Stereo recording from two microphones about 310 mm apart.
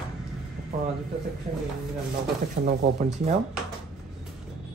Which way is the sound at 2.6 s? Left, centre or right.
Right.